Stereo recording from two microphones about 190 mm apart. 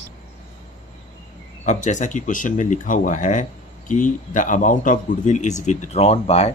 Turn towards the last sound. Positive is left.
turn(degrees=35)  # may be behind; listen again after turning